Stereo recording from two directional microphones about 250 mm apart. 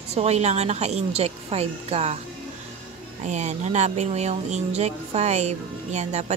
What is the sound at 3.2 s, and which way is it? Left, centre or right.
Speech, right.